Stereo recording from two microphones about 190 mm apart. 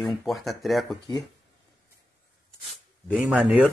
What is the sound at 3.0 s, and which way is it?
Speech, 5° right (ahead or behind).